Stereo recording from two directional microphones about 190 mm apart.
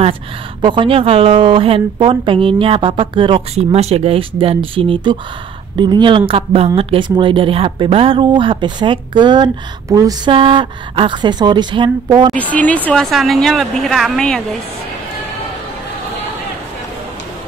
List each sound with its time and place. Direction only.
0.6 s a woman's voice: 25° right (ahead or behind)
12.4 s speech: 10° left (ahead or behind)